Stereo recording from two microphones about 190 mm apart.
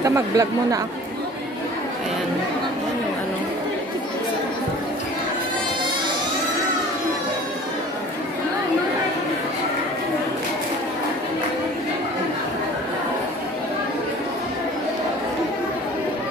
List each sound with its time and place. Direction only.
0.0 s speech: 15° right (ahead or behind)